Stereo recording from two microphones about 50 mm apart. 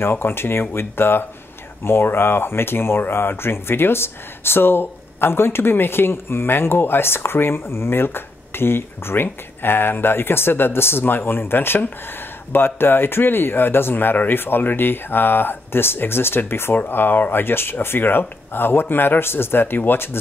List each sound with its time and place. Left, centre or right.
0.0 s speech: left